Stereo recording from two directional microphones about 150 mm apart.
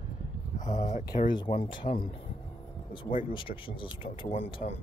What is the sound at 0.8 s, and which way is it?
Speech, 50° left (ahead or behind).